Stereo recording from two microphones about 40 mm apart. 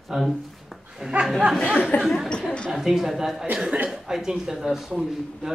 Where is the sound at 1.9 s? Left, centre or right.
Left.